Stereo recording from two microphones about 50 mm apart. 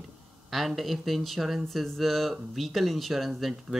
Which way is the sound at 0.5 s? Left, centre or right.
Centre.